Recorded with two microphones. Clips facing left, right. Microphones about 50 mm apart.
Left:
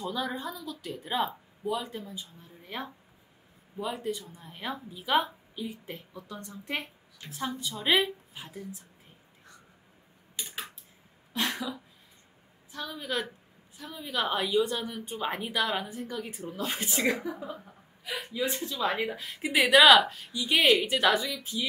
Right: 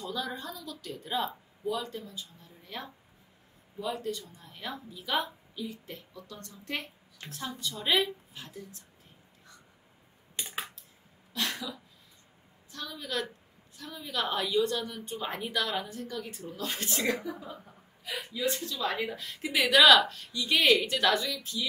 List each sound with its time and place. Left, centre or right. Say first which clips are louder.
0.0 s a woman's voice: left 3 dB; centre
11.3 s a woman's voice: left 3 dB; left